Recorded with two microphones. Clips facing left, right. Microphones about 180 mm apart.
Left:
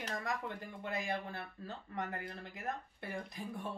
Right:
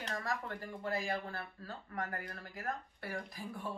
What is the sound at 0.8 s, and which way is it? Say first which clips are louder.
Speech: right 2 dB; 20° left (ahead or behind).